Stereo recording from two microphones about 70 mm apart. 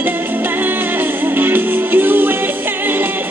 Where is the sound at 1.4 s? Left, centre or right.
Right.